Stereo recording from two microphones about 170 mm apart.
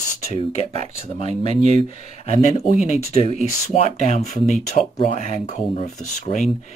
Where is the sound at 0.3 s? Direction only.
35° left (ahead or behind).